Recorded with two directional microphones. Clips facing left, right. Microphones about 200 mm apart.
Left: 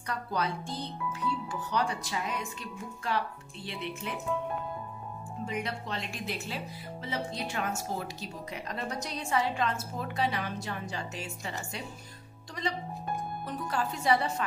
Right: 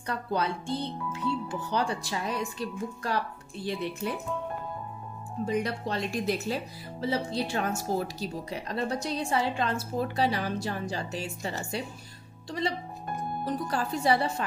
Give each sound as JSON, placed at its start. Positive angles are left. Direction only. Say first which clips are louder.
{"t": 0.0, "sound": "speech", "louder": "right 3 dB", "side_deg": -30}
{"t": 5.4, "sound": "speech", "louder": "right 6 dB", "side_deg": -40}
{"t": 13.5, "sound": "speech", "louder": "right 3 dB", "side_deg": -35}